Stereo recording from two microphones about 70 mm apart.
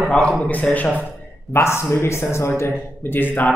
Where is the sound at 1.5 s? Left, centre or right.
Left.